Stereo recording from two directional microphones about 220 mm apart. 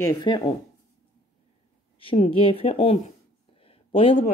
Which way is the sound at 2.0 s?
25° left (ahead or behind).